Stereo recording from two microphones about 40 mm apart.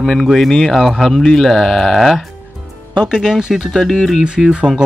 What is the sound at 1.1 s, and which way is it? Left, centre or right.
Speech, centre.